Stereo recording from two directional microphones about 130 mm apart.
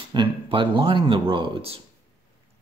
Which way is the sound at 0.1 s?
40° right (ahead or behind).